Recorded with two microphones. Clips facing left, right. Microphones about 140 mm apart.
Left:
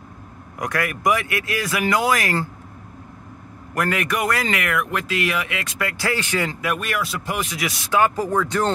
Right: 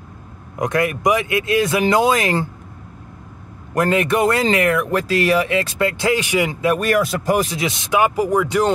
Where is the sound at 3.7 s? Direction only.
25° right (ahead or behind).